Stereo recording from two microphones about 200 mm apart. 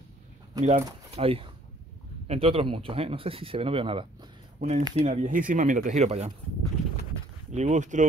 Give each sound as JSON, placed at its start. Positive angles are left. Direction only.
{"t": 0.6, "sound": "speech", "side_deg": -35}
{"t": 7.5, "sound": "speech", "side_deg": -35}